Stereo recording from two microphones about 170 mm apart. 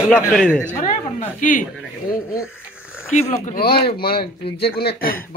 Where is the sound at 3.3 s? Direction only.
50° left (ahead or behind).